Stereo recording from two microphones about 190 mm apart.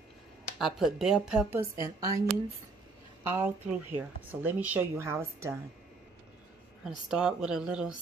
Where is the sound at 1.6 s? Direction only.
20° right (ahead or behind).